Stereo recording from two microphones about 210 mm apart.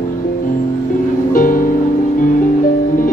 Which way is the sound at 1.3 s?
40° left (ahead or behind).